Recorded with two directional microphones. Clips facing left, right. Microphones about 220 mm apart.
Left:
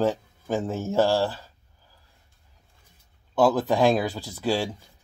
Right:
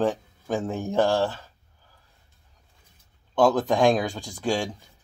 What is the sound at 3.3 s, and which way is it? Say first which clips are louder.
A man's voice: even; 5° left (ahead or behind).